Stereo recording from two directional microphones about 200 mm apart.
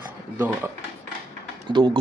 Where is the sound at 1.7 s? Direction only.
25° right (ahead or behind).